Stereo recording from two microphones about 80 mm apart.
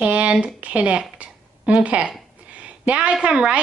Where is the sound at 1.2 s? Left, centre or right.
Centre.